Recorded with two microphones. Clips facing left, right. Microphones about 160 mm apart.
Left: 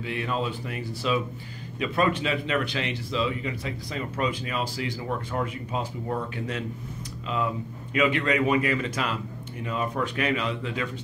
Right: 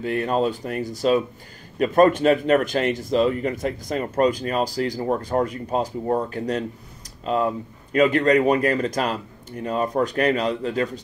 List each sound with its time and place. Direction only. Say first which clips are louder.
0.0 s speech: right 7 dB; 45° right (ahead or behind)